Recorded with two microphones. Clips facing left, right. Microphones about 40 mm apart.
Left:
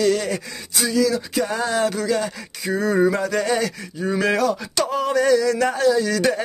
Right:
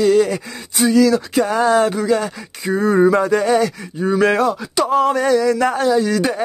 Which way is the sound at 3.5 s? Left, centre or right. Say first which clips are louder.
Right 6 dB; centre.